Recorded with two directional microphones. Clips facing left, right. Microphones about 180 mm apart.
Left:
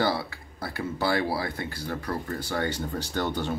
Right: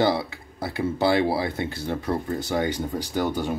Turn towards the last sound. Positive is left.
turn(degrees=-10)  # may be behind; listen again after turning